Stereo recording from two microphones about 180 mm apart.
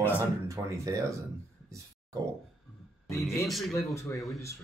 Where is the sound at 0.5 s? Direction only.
15° right (ahead or behind).